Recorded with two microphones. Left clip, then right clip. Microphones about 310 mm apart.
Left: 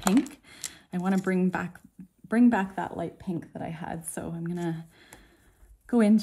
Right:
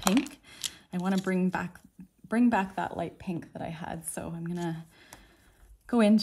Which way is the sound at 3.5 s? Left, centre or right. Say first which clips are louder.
Left 1 dB; centre.